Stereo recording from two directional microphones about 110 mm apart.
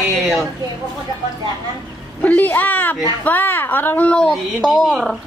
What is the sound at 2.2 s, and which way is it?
A woman's voice, 15° left (ahead or behind).